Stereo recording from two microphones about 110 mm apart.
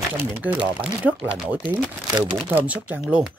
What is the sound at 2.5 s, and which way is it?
Speech, 15° right (ahead or behind).